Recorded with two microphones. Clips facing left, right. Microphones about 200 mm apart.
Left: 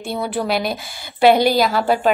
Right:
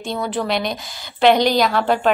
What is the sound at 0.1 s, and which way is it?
A woman's voice, 10° left (ahead or behind).